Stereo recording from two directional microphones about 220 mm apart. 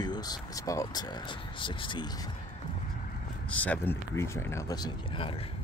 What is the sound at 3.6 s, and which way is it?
Speech, 5° left (ahead or behind).